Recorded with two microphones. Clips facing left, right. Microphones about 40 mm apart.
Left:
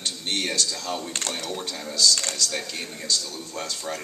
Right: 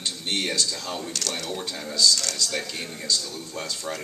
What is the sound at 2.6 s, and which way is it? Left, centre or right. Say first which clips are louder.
Speech: even; right.